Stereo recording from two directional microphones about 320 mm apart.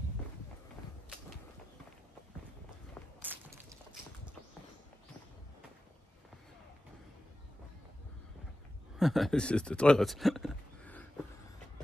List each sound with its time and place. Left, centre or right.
2.9 s walk: centre
8.9 s speech: centre